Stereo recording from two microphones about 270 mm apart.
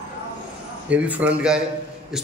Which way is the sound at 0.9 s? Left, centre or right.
Centre.